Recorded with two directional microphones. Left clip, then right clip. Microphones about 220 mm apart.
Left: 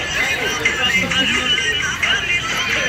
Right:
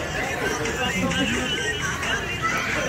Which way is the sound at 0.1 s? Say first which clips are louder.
Left 8 dB; 30° right (ahead or behind).